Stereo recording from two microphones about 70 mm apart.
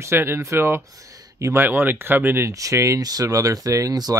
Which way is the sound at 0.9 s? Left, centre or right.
Right.